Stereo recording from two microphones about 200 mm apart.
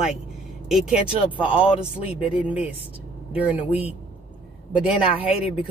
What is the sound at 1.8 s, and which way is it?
Speech, 30° left (ahead or behind).